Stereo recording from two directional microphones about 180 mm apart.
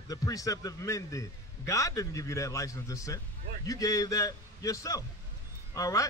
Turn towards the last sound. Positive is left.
turn(degrees=20)  # may be behind; listen again after turning